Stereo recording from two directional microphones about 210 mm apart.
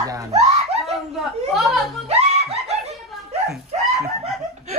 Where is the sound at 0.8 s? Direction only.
Centre (ahead or behind).